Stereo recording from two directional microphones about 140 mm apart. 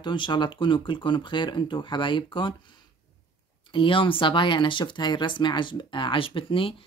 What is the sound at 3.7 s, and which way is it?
Speech, 35° left (ahead or behind).